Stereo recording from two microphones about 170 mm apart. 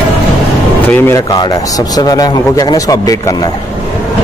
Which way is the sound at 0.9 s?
15° left (ahead or behind).